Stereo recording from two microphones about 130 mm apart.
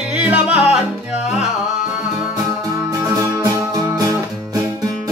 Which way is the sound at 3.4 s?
25° right (ahead or behind).